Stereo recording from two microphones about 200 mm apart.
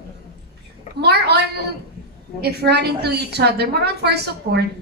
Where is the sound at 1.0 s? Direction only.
55° right (ahead or behind).